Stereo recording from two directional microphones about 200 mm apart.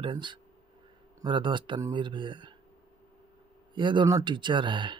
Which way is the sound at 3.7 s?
25° right (ahead or behind).